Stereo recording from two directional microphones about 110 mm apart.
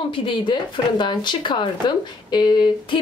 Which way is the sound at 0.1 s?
50° left (ahead or behind).